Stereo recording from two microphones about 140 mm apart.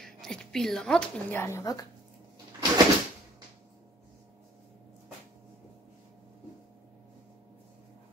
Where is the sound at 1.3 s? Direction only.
20° left (ahead or behind).